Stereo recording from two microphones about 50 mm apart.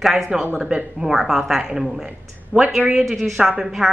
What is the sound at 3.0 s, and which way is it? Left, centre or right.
Speech, centre.